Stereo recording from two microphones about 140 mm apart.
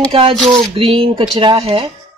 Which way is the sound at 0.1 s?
40° right (ahead or behind).